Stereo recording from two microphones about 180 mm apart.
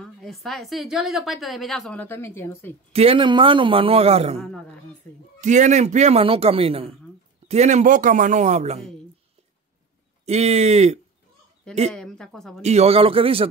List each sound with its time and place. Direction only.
0.0 s a woman's voice: centre (ahead or behind)
2.9 s speech: 35° right (ahead or behind)
5.4 s speech: 40° right (ahead or behind)
10.2 s speech: 35° right (ahead or behind)
11.9 s a woman's voice: 5° left (ahead or behind)
12.6 s speech: 35° right (ahead or behind)